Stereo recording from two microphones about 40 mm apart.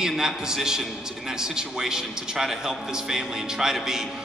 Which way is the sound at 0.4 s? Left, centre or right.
Centre.